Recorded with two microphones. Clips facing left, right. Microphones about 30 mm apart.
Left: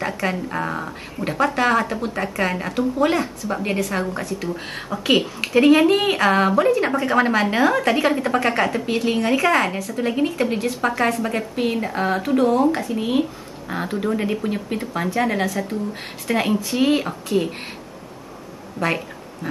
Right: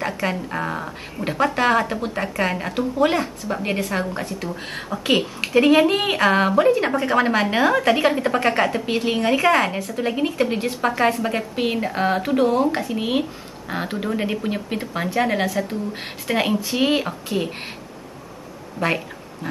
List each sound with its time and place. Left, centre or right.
0.0 s speech: centre
4.1 s speech: right
4.4 s speech: centre
18.8 s a woman's voice: centre